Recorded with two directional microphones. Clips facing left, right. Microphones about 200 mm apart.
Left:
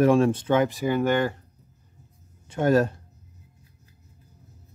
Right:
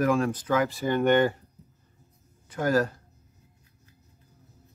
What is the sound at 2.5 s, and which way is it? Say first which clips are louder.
Speech: left 4 dB; 25° left (ahead or behind).